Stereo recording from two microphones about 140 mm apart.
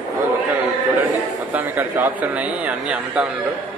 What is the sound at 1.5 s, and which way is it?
A man's voice, 10° right (ahead or behind).